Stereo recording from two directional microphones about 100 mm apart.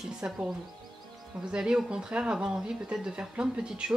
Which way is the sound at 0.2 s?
15° right (ahead or behind).